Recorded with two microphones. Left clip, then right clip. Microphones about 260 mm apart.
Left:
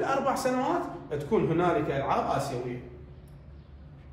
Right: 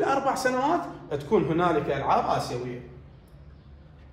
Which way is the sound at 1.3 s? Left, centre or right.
Right.